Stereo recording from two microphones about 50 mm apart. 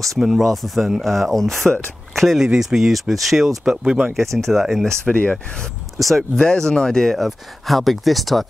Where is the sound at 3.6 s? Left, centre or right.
Centre.